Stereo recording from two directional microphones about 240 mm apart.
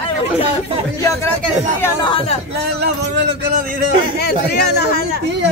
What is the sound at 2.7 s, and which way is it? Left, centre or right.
Speech, right.